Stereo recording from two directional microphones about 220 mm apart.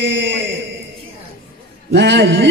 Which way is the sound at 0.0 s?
55° right (ahead or behind).